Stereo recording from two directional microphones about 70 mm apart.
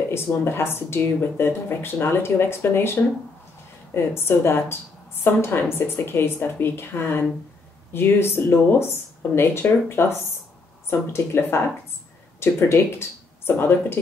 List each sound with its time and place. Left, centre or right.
0.1 s speech: left